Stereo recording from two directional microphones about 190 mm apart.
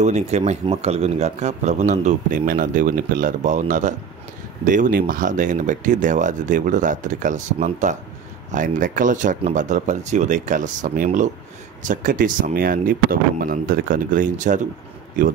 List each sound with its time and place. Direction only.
0.0 s a man's voice: 35° right (ahead or behind)